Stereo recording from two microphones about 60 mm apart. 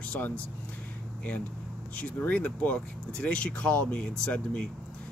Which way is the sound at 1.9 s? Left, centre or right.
Left.